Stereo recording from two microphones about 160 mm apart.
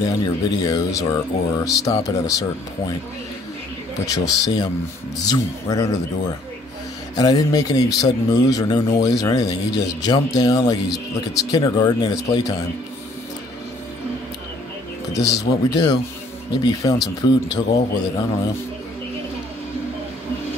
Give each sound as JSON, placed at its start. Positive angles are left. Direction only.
{"t": 0.0, "sound": "speech", "side_deg": 25}
{"t": 4.3, "sound": "speech", "side_deg": 25}
{"t": 15.1, "sound": "speech", "side_deg": 20}